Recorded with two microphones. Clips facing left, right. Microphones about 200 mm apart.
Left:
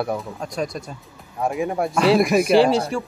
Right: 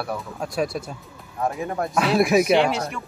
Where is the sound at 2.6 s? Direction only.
30° left (ahead or behind).